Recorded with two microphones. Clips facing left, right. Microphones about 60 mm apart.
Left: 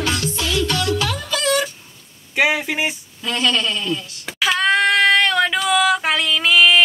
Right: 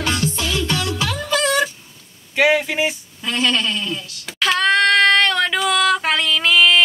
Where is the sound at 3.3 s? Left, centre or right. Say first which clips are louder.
Even; right.